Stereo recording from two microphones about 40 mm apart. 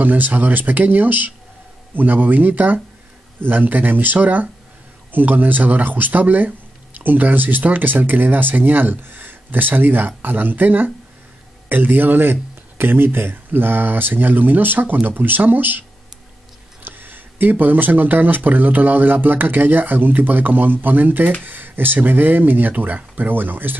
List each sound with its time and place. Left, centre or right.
0.0 s speech: right
16.8 s speech: right